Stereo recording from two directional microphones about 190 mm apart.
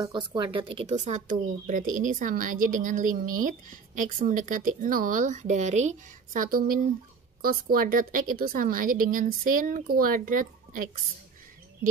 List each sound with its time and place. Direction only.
0.0 s speech: 25° right (ahead or behind); by 10.8 s 45° right (ahead or behind)